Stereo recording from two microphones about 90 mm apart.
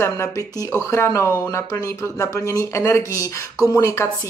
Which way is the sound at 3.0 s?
30° right (ahead or behind).